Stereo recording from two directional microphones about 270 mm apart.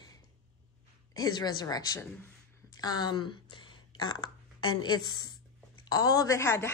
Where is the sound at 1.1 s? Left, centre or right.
Centre.